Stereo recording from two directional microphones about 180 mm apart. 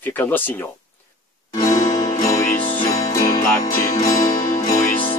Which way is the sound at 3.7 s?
45° left (ahead or behind).